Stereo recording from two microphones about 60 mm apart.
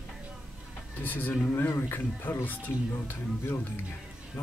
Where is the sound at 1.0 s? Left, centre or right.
Left.